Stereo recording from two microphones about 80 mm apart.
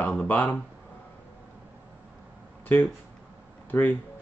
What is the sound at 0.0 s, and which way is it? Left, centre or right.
Speech, left.